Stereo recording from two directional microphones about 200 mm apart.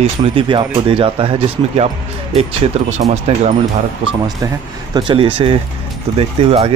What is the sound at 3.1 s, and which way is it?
Speech, 35° right (ahead or behind).